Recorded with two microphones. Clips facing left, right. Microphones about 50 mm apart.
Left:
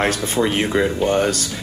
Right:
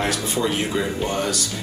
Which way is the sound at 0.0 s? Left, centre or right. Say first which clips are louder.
Left 4 dB; left.